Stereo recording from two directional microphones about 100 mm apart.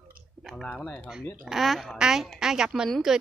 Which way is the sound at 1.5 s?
Centre (ahead or behind).